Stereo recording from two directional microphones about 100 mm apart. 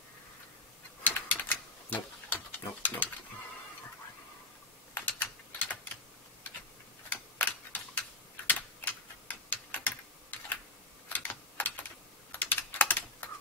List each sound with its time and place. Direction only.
1.0 s typewriter: 20° left (ahead or behind)
4.9 s typing: 20° left (ahead or behind)
7.1 s typewriter: 20° left (ahead or behind)
8.5 s tick-tock: 15° left (ahead or behind)
11.1 s typing: 20° left (ahead or behind)